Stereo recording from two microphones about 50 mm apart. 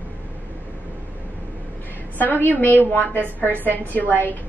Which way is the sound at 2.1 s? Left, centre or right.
Left.